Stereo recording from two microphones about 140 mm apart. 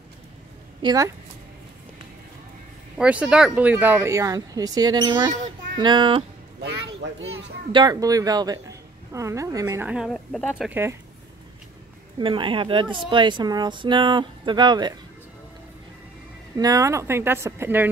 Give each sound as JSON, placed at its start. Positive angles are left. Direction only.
{"t": 0.8, "sound": "speech", "side_deg": -25}
{"t": 3.0, "sound": "speech", "side_deg": -10}
{"t": 7.7, "sound": "speech", "side_deg": -30}
{"t": 9.8, "sound": "speech", "side_deg": -5}
{"t": 10.7, "sound": "speech", "side_deg": -15}
{"t": 12.2, "sound": "speech", "side_deg": -35}
{"t": 16.5, "sound": "speech", "side_deg": -25}